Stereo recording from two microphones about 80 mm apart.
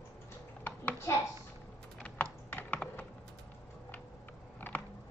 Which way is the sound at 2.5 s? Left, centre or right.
Left.